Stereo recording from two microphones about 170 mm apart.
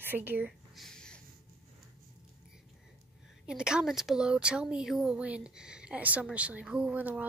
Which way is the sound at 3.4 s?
5° right (ahead or behind).